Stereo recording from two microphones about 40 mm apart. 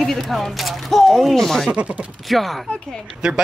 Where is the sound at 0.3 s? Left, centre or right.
Centre.